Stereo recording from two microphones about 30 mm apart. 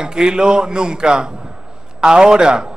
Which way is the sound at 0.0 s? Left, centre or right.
Right.